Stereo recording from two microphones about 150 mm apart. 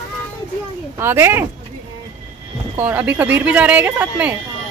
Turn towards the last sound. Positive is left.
turn(degrees=-10)  # may be behind; listen again after turning